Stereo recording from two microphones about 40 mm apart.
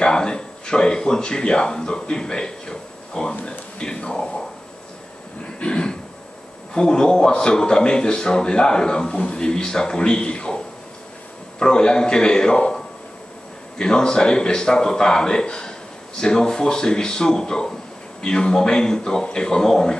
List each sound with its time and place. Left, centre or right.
0.0 s a man's voice: left
5.6 s a sound: left
6.7 s a man's voice: centre
11.6 s a man's voice: left
13.7 s a man's voice: centre